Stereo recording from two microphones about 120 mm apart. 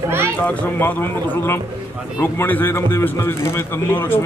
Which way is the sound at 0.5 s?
15° left (ahead or behind).